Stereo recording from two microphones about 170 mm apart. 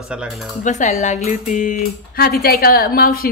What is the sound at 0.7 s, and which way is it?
Speech, 45° left (ahead or behind).